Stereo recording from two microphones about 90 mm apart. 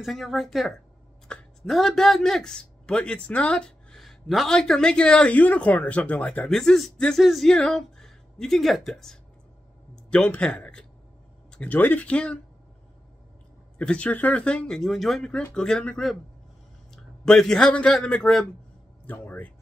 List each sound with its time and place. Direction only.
0.0 s speech: centre (ahead or behind); by 6.5 s 15° left (ahead or behind)
6.5 s a woman's voice: 5° left (ahead or behind)
13.7 s a man's voice: 15° left (ahead or behind)
19.0 s a sound: 20° left (ahead or behind)